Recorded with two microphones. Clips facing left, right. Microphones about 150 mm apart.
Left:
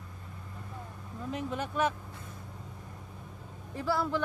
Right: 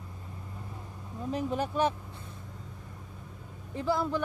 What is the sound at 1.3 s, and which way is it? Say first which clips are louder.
Speech: right 4 dB; 35° right (ahead or behind).